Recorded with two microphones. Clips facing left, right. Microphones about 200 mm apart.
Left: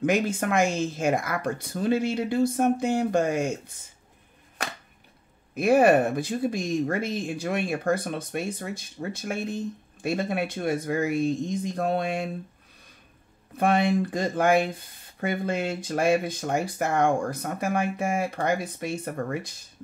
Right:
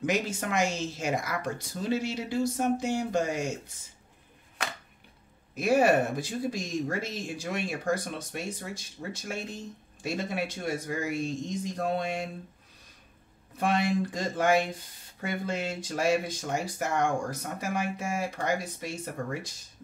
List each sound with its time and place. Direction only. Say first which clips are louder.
0.0 s speech: left 5 dB; 55° left (ahead or behind)
5.5 s speech: left 4 dB; 55° left (ahead or behind)
13.6 s speech: left 4 dB; 55° left (ahead or behind)